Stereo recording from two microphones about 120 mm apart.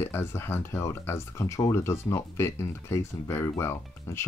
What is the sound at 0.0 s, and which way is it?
Speech, 20° left (ahead or behind).